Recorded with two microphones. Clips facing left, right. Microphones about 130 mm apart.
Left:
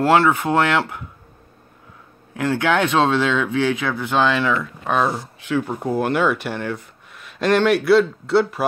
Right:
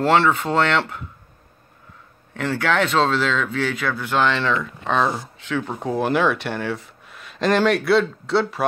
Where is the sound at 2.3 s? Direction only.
10° left (ahead or behind).